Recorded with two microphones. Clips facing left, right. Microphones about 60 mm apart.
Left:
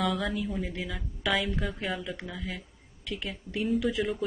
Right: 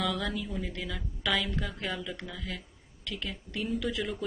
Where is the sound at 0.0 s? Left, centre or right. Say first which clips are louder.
Left 3 dB; centre.